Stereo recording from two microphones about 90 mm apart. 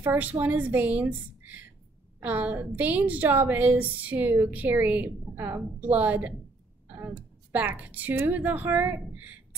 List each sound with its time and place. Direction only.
0.0 s a woman's voice: 20° right (ahead or behind)
6.9 s a sound: 15° right (ahead or behind)
7.5 s a woman's voice: 20° right (ahead or behind)